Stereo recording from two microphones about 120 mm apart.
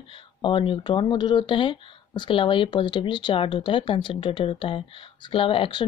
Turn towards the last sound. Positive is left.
turn(degrees=50)  # may be behind; listen again after turning